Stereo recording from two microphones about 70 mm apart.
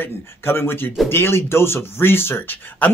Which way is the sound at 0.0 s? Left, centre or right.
Left.